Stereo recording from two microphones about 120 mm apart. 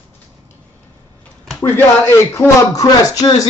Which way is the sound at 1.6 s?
20° left (ahead or behind).